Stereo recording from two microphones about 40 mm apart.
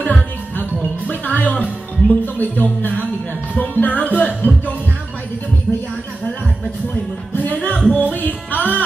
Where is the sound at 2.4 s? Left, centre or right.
Left.